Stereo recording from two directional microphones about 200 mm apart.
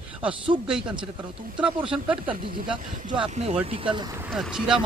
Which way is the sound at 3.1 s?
30° right (ahead or behind).